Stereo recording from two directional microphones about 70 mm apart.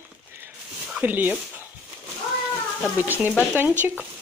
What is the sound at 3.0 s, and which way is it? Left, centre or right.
Speech, right.